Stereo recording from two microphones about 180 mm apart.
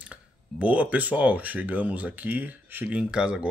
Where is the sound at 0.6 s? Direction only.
10° right (ahead or behind).